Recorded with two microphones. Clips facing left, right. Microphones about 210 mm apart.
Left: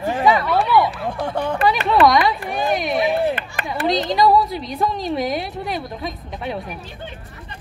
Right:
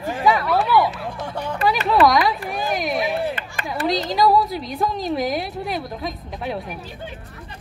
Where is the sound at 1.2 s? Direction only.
55° left (ahead or behind).